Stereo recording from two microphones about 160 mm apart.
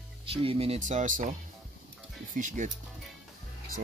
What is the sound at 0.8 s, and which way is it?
Speech, 50° right (ahead or behind).